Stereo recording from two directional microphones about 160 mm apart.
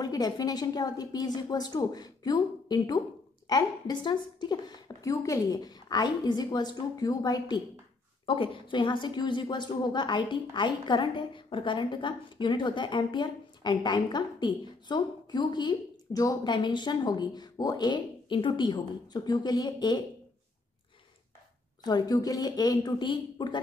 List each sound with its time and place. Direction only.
0.0 s a woman's voice: 25° left (ahead or behind)
21.8 s a woman's voice: 25° left (ahead or behind)